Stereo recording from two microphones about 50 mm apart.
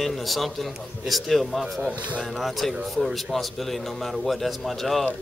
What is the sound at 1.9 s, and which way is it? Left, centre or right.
Speech, right.